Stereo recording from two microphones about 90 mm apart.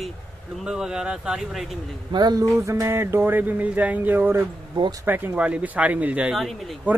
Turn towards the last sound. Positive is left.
turn(degrees=0)  # may be behind; listen again after turning